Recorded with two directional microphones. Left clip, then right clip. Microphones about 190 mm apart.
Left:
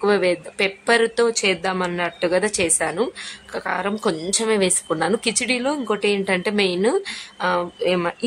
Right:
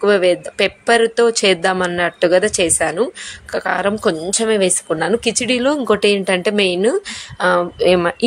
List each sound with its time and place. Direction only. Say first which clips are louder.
0.0 s a woman's voice: right 5 dB; 10° right (ahead or behind)